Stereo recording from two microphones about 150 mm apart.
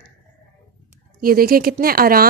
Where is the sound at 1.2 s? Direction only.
80° right.